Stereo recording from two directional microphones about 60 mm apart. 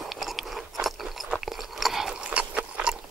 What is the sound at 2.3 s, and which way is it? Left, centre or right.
Horse, right.